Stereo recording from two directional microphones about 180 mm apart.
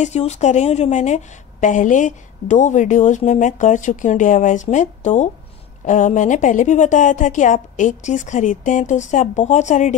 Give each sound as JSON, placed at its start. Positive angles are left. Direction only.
{"t": 0.0, "sound": "a woman's voice", "side_deg": 40}